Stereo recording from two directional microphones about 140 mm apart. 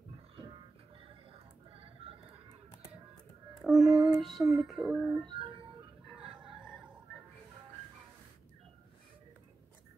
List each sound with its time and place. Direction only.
1.8 s music: 45° right (ahead or behind)
3.6 s child singing: 5° right (ahead or behind)
4.6 s speech: 5° right (ahead or behind)
5.3 s music: 40° right (ahead or behind)
6.2 s chicken: 35° right (ahead or behind)